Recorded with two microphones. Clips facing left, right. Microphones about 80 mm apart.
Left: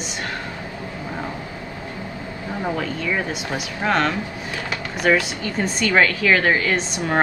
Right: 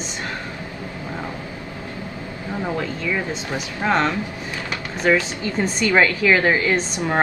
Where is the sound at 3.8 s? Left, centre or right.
Right.